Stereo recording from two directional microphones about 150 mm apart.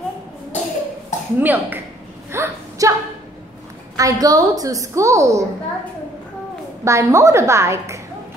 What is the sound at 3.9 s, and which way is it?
A woman's voice, 25° right (ahead or behind).